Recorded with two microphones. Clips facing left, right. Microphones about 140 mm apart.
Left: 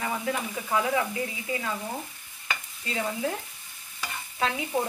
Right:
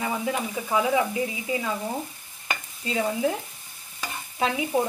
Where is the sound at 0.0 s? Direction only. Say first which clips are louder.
Right 3 dB; 15° right (ahead or behind).